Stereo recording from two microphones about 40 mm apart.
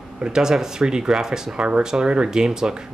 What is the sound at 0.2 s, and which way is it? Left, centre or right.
Speech, centre.